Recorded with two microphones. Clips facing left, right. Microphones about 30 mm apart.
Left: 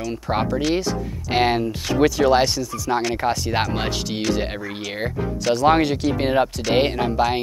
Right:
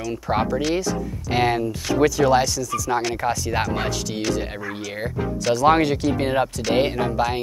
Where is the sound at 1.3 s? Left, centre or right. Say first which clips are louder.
Left 1 dB; left.